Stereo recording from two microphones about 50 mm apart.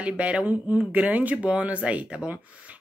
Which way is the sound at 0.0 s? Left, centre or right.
Right.